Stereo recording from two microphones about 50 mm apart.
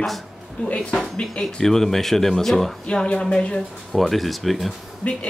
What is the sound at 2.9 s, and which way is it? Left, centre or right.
Speech, left.